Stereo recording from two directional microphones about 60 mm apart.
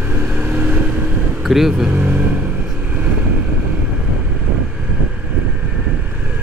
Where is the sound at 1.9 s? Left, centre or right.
Right.